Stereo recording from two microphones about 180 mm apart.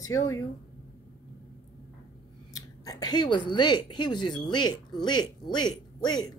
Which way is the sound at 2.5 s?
20° left (ahead or behind).